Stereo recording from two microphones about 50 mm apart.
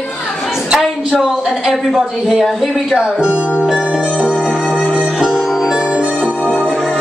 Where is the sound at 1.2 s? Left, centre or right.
Centre.